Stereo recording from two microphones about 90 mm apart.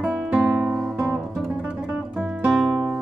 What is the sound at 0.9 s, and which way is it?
Music, 15° right (ahead or behind).